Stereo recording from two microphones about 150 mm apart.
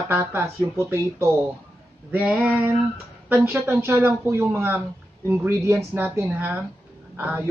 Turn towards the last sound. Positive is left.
turn(degrees=-10)  # may be behind; listen again after turning